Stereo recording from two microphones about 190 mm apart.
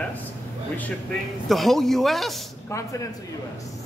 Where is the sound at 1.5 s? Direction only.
Centre (ahead or behind).